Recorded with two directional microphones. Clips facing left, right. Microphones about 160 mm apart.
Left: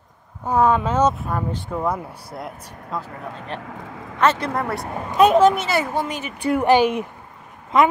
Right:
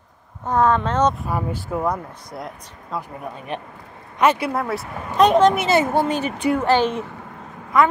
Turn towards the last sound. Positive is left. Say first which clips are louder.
# right 6 dB
turn(degrees=-80)